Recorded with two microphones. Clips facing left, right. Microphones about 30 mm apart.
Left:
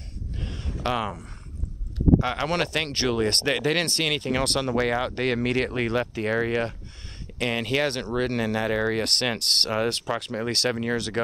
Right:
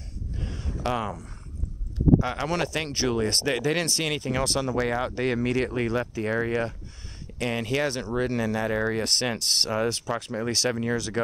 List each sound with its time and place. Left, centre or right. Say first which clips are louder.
0.3 s a sound: even; left
0.8 s speech: left 1 dB; left
2.1 s speech: left 2 dB; left